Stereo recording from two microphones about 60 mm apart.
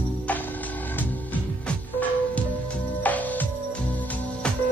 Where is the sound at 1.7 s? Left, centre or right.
Left.